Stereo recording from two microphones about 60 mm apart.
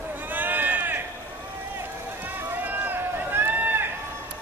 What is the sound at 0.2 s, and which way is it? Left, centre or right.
Run, right.